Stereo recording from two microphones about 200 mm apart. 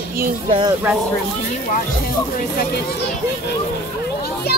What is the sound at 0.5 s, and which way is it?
Speech, 25° right (ahead or behind).